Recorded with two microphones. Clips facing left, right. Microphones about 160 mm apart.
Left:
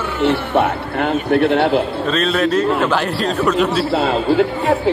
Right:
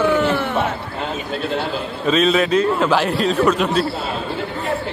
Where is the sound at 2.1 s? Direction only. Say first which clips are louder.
Right 5 dB; centre (ahead or behind).